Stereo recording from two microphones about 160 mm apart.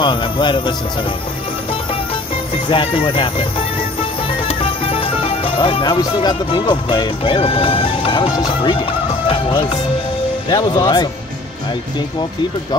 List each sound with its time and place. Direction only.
0.0 s speech: 30° left (ahead or behind)
2.7 s speech: 35° left (ahead or behind)
9.3 s music: 30° left (ahead or behind)
10.5 s speech: 25° left (ahead or behind)